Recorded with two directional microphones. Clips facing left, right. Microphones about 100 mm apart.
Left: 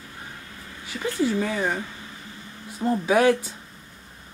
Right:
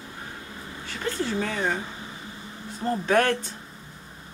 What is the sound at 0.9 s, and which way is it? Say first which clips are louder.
Speech: left 4 dB; 5° left (ahead or behind).